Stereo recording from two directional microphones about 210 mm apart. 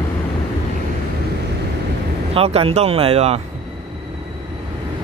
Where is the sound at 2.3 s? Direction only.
30° right (ahead or behind).